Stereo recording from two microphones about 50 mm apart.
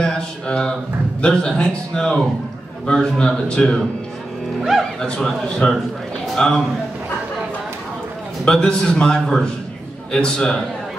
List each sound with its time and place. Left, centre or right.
0.0 s a man's voice: centre
5.0 s a man's voice: centre
8.5 s a man's voice: centre